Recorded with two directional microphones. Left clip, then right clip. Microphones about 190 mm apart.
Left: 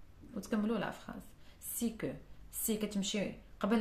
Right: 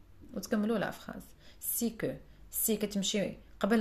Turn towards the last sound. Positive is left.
turn(degrees=-35)  # may be behind; listen again after turning